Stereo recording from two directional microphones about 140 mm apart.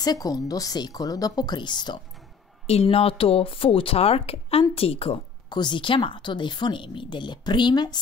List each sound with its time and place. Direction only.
0.0 s a woman's voice: 25° left (ahead or behind)
2.6 s speech: 50° left (ahead or behind); by 8.0 s 30° left (ahead or behind)